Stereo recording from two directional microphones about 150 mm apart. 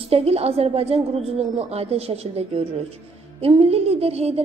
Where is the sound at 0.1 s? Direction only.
40° right (ahead or behind).